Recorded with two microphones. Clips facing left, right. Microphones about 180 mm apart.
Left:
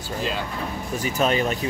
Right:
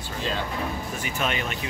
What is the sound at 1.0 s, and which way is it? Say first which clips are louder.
Speech: left 8 dB; 40° left (ahead or behind).